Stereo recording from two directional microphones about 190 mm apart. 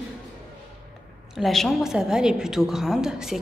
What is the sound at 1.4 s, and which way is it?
A woman's voice, centre (ahead or behind).